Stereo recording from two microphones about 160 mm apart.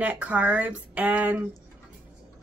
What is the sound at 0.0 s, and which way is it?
Speech, 10° right (ahead or behind).